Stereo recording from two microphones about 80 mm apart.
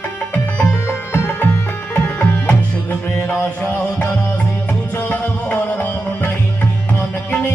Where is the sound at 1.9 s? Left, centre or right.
Left.